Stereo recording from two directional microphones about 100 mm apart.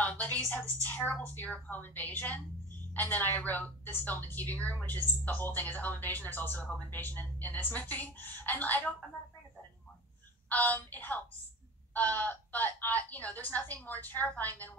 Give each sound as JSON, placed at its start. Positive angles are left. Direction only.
{"t": 0.0, "sound": "a woman's voice", "side_deg": 15}
{"t": 10.5, "sound": "a woman's voice", "side_deg": 15}